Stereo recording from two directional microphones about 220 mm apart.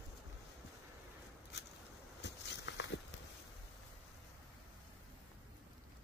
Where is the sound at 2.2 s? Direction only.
50° left (ahead or behind).